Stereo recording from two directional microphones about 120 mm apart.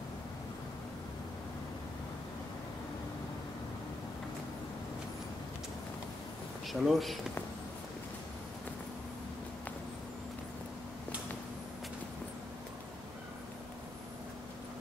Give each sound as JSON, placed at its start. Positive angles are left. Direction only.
{"t": 6.7, "sound": "speech", "side_deg": 0}